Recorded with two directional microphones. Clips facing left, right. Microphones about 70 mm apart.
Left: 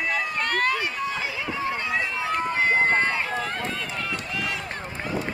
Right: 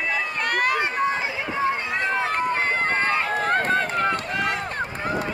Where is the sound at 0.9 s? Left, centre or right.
Right.